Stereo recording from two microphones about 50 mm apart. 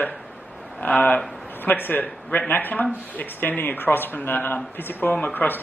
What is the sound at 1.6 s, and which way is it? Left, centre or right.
Speech, left.